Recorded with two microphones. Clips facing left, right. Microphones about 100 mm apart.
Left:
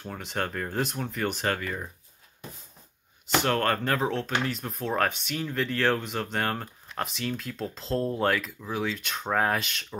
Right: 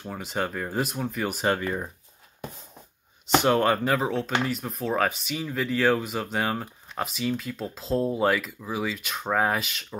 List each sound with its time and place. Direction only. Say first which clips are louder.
0.0 s speech: right 2 dB; 5° right (ahead or behind)
1.4 s speech: right 4 dB; 20° right (ahead or behind)
3.3 s speech: right 4 dB; 15° right (ahead or behind)